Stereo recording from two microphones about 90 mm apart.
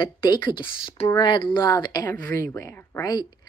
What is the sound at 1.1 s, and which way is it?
Speech, 60° left (ahead or behind).